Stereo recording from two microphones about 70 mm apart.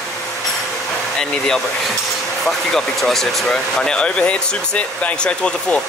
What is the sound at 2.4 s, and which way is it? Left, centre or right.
Speech, centre.